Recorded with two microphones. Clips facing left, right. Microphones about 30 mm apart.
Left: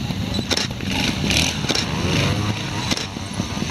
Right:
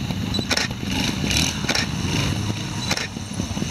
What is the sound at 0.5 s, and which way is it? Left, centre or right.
Vehicle, centre.